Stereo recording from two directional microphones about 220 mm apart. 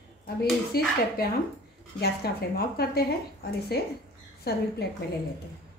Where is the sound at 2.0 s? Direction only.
45° left (ahead or behind).